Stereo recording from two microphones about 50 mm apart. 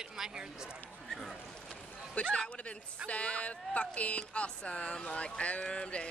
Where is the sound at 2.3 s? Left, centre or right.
Left.